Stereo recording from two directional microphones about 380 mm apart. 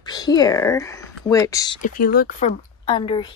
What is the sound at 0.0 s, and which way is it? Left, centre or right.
Speech, centre.